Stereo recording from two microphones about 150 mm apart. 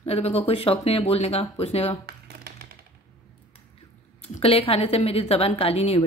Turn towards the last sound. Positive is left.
turn(degrees=45)  # may be behind; listen again after turning